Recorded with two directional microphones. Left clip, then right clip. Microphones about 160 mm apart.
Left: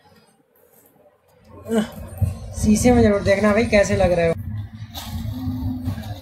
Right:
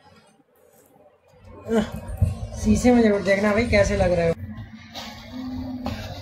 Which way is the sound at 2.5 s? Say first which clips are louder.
Left 2 dB; 15° left (ahead or behind).